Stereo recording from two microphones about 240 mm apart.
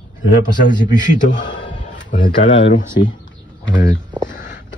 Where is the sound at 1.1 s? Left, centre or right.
Left.